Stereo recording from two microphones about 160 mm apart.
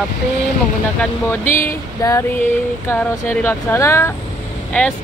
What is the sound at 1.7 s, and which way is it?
Speech, 15° left (ahead or behind).